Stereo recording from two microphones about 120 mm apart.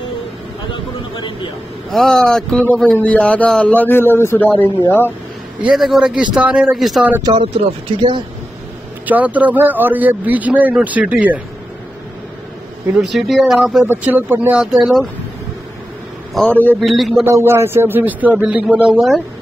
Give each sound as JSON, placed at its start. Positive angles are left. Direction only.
{"t": 1.9, "sound": "a man's voice", "side_deg": 5}
{"t": 5.6, "sound": "a man's voice", "side_deg": -5}
{"t": 9.0, "sound": "speech", "side_deg": -15}
{"t": 13.0, "sound": "a man's voice", "side_deg": 0}
{"t": 13.8, "sound": "speech", "side_deg": -15}
{"t": 16.4, "sound": "a man's voice", "side_deg": 15}
{"t": 16.8, "sound": "a man's voice", "side_deg": 0}
{"t": 17.2, "sound": "speech", "side_deg": -20}